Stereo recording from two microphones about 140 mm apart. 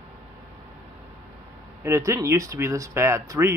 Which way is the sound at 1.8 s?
20° right (ahead or behind).